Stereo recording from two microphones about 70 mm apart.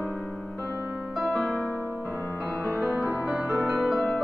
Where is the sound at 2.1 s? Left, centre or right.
Left.